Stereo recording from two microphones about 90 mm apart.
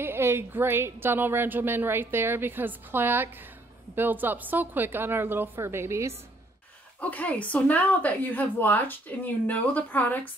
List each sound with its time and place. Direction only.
0.0 s a woman's voice: 25° right (ahead or behind)
7.0 s speech: 15° left (ahead or behind)